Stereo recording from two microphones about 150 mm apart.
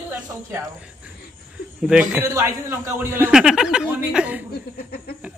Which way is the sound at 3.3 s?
5° right (ahead or behind).